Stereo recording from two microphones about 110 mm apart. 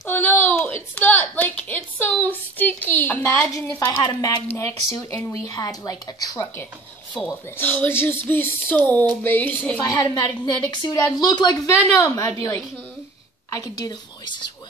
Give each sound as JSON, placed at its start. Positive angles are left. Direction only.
{"t": 0.0, "sound": "a sound", "side_deg": 20}
{"t": 3.5, "sound": "a woman's voice", "side_deg": 20}
{"t": 4.0, "sound": "a woman's voice", "side_deg": 40}
{"t": 4.5, "sound": "a woman's voice", "side_deg": 25}
{"t": 7.2, "sound": "speech", "side_deg": 15}
{"t": 9.8, "sound": "a woman's voice", "side_deg": 45}
{"t": 11.9, "sound": "a woman's voice", "side_deg": 25}